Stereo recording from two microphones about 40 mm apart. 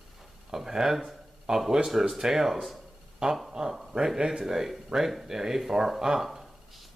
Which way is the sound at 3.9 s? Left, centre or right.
Centre.